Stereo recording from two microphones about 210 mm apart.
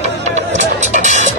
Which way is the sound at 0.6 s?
35° right (ahead or behind).